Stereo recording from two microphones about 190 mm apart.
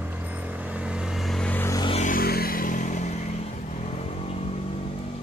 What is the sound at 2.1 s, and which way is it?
Vehicle, 55° left (ahead or behind).